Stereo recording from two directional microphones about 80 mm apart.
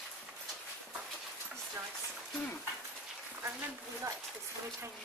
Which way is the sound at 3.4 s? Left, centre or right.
Right.